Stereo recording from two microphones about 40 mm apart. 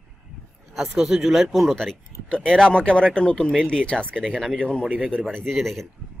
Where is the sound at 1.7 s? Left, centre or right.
Centre.